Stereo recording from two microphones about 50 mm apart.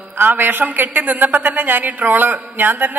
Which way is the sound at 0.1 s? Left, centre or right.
Right.